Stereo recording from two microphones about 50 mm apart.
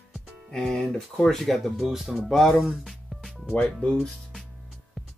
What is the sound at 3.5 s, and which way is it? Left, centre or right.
Speech, left.